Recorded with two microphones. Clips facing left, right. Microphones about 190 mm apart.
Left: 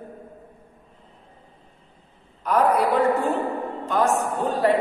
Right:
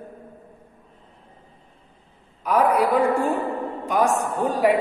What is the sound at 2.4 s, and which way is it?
A man's voice, 10° right (ahead or behind).